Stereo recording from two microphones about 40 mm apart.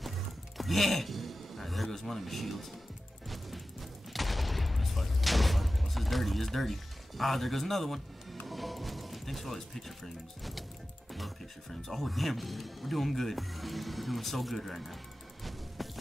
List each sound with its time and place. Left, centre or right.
0.6 s a man's voice: centre
3.3 s music: centre
4.1 s fusillade: centre
8.5 s speech: centre